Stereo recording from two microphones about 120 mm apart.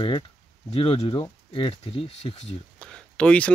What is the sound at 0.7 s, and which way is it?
Speech, 50° left (ahead or behind).